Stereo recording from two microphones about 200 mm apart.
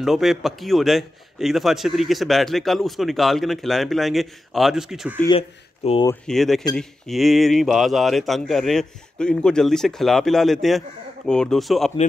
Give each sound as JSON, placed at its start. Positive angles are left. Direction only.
{"t": 0.0, "sound": "a man's voice", "side_deg": 0}
{"t": 5.8, "sound": "speech", "side_deg": 30}
{"t": 6.2, "sound": "a man's voice", "side_deg": 0}